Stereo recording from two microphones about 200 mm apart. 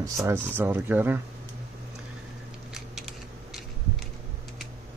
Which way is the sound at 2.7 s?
Centre (ahead or behind).